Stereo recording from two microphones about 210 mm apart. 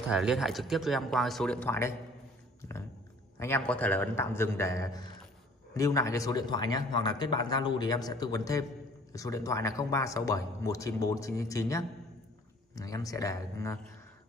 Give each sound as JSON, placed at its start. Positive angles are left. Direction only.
{"t": 0.1, "sound": "speech", "side_deg": -5}
{"t": 2.6, "sound": "a sound", "side_deg": 10}
{"t": 3.3, "sound": "a man's voice", "side_deg": 10}